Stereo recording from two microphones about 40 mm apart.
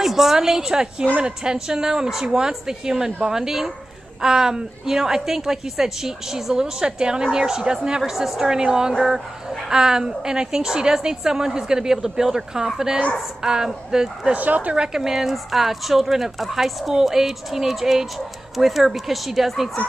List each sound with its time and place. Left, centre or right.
0.0 s a woman's voice: centre
8.0 s a woman's voice: centre
14.3 s speech: right
14.8 s a woman's voice: centre